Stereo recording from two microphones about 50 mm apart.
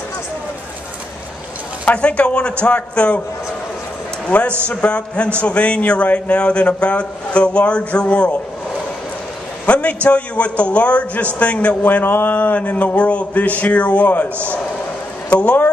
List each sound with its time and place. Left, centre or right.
1.9 s a man's voice: left
4.3 s a man's voice: left
9.7 s a sound: left
10.0 s a man's voice: left
12.0 s speech: left
15.2 s speech: left